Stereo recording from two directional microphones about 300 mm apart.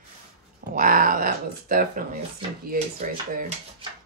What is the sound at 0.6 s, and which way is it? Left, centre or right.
Speech, right.